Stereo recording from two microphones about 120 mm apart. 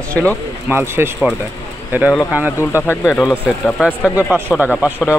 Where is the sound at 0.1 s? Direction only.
10° left (ahead or behind).